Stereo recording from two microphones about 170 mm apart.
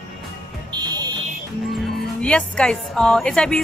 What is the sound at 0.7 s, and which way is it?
Fire alarm, 25° right (ahead or behind).